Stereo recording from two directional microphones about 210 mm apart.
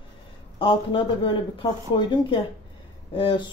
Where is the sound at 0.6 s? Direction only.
25° left (ahead or behind).